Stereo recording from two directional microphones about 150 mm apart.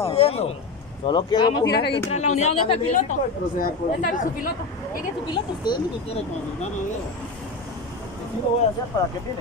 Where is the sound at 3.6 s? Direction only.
70° left (ahead or behind).